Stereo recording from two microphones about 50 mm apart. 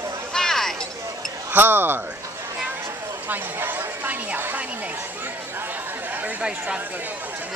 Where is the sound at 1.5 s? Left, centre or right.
Right.